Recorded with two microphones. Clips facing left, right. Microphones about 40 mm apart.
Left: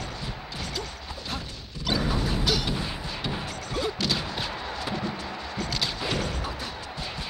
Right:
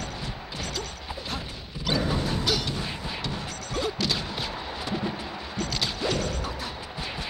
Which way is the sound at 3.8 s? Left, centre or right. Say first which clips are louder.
Even; centre.